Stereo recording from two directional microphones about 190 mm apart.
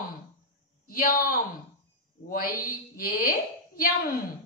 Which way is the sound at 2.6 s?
50° left (ahead or behind).